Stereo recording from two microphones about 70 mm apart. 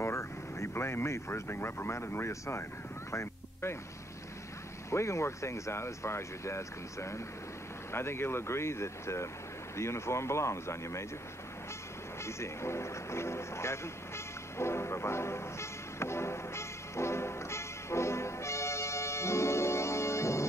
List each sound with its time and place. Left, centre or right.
0.0 s speech: left
3.1 s music: left
4.9 s speech: left
12.2 s music: left